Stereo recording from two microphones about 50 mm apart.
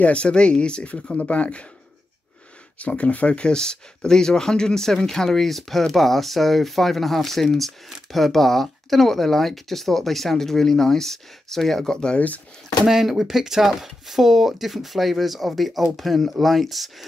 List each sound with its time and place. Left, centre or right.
0.0 s speech: left
2.8 s speech: left
12.8 s speech: centre